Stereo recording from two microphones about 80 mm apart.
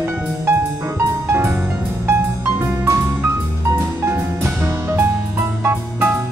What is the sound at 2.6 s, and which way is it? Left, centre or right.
Music, right.